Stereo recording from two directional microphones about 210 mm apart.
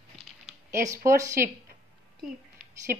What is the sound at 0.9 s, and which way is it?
Speech, 15° right (ahead or behind).